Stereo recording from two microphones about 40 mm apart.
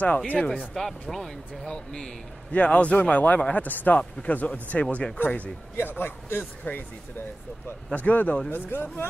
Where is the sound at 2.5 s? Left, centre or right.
Left.